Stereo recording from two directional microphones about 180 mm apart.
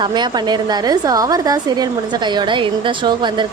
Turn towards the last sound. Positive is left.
turn(degrees=-25)  # may be behind; listen again after turning